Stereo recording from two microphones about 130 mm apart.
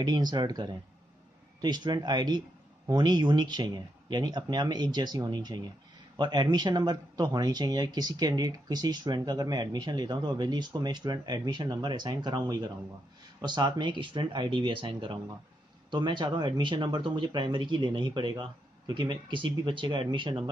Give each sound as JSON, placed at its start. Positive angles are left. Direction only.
{"t": 0.0, "sound": "speech", "side_deg": -35}